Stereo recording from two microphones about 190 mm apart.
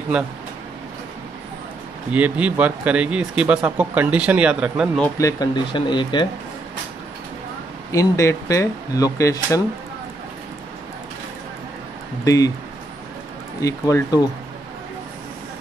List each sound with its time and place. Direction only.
2.1 s speech: 5° right (ahead or behind)
5.0 s speech: 20° left (ahead or behind)
7.9 s speech: 15° left (ahead or behind)
13.6 s speech: 15° left (ahead or behind)